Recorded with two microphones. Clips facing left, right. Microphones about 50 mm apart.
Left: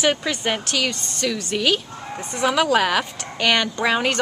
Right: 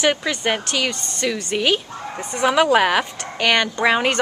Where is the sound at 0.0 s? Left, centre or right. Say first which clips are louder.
Right 1 dB; centre.